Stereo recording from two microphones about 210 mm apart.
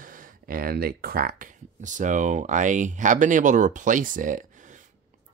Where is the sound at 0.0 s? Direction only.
40° right (ahead or behind).